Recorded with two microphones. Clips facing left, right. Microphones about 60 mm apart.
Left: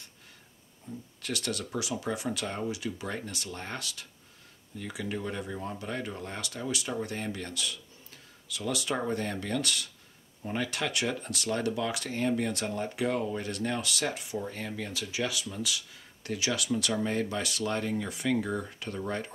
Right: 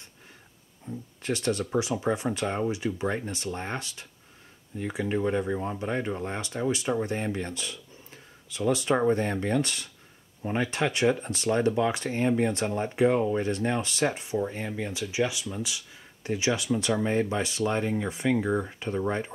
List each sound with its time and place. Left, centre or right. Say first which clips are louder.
0.8 s speech: right 6 dB; right